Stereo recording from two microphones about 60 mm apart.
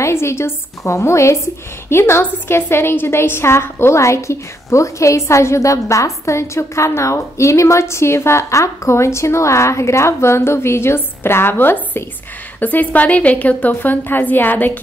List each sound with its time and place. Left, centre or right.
0.0 s a woman's voice: left
13.7 s a woman's voice: left